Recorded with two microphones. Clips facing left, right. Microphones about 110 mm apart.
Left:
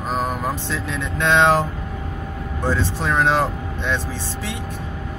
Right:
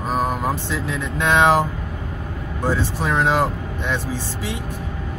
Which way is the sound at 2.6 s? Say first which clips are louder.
Even; 15° right (ahead or behind).